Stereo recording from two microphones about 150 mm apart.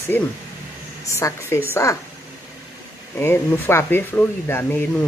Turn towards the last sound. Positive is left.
turn(degrees=15)  # may be behind; listen again after turning